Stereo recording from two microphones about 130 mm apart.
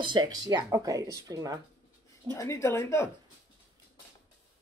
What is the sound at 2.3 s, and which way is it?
Speech, 20° left (ahead or behind).